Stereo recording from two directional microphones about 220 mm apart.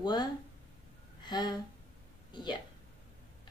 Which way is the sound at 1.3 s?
20° left (ahead or behind).